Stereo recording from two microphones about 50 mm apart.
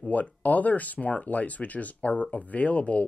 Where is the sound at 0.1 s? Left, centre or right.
Left.